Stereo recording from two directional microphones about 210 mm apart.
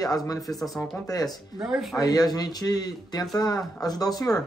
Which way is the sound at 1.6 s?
5° right (ahead or behind).